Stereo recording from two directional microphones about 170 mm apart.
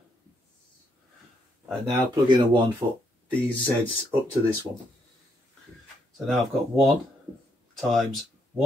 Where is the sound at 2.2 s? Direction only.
25° right (ahead or behind).